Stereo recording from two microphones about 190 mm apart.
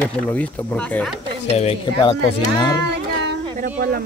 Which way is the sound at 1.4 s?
35° left (ahead or behind).